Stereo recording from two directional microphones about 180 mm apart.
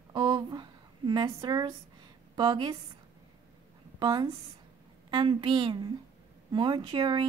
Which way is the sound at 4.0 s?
25° right (ahead or behind).